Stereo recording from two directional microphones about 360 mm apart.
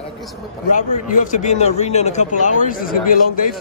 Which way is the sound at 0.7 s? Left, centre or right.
Left.